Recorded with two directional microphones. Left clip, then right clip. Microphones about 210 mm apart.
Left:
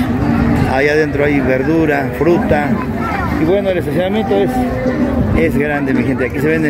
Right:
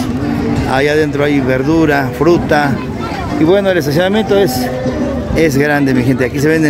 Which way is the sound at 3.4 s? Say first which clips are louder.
Right 5 dB; 40° right (ahead or behind).